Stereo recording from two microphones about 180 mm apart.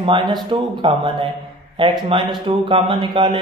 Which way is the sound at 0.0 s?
25° right (ahead or behind).